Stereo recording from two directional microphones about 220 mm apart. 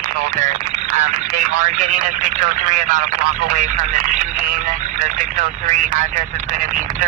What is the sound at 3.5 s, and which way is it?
Speech, 35° right (ahead or behind).